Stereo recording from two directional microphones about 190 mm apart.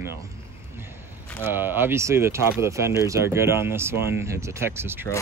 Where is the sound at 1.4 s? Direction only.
10° right (ahead or behind).